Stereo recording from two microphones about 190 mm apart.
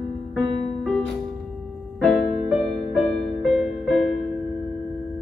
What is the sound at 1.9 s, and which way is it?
Music, centre (ahead or behind).